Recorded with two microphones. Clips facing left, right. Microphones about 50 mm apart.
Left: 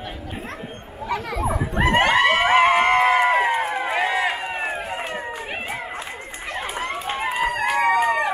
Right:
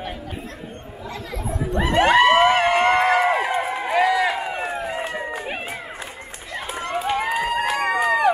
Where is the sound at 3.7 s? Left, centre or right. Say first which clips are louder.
Right 3 dB; left.